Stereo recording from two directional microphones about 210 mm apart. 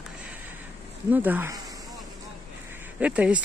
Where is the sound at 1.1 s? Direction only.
10° right (ahead or behind).